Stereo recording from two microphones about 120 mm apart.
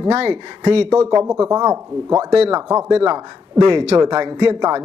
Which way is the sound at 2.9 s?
55° right (ahead or behind).